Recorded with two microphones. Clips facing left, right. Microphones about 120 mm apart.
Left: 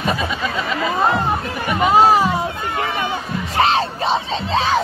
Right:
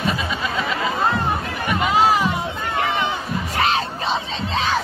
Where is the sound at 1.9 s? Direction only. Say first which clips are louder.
Left 5 dB; 40° left (ahead or behind).